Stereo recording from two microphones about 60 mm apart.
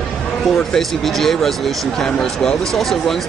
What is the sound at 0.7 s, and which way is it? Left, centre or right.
Speech, centre.